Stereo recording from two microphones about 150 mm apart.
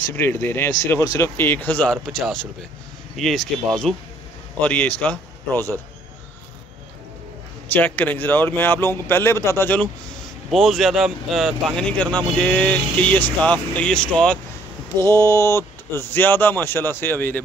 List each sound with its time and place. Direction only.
0.0 s speech: 15° left (ahead or behind)
7.7 s speech: 10° left (ahead or behind)
10.5 s speech: centre (ahead or behind)
15.1 s speech: 20° left (ahead or behind)